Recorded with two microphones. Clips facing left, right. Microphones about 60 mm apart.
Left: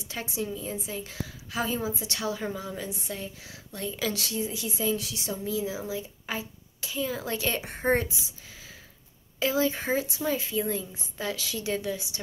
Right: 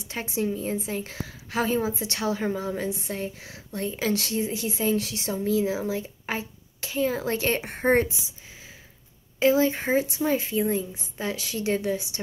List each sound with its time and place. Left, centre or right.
0.1 s a woman's voice: right
9.4 s speech: right
10.6 s a woman's voice: right